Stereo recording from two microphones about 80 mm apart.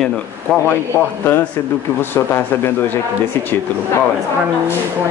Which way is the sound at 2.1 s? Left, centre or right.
Left.